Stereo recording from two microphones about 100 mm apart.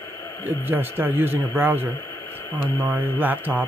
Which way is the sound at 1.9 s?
20° left (ahead or behind).